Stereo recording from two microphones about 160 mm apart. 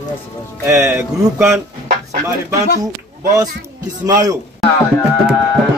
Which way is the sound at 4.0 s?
20° right (ahead or behind).